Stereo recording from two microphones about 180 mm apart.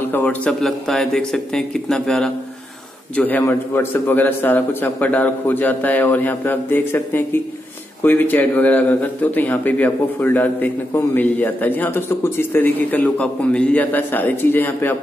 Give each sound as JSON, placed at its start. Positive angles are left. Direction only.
{"t": 0.1, "sound": "speech", "side_deg": 10}